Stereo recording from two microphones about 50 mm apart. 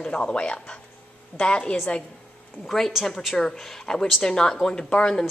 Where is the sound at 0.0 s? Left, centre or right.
Centre.